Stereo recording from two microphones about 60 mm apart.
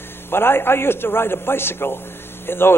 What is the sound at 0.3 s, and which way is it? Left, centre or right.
A man's voice, left.